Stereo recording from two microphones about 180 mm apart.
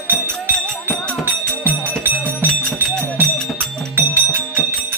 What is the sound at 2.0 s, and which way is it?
Music, 10° right (ahead or behind).